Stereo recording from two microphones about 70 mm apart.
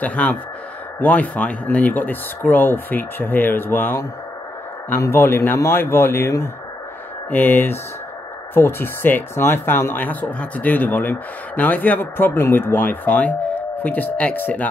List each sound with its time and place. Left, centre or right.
0.0 s speech: left
5.1 s speech: left
7.2 s speech: left